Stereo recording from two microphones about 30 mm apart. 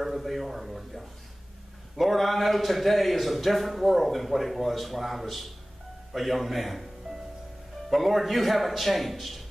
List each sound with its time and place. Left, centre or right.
0.0 s speech: centre
2.1 s a man's voice: centre
7.9 s a man's voice: centre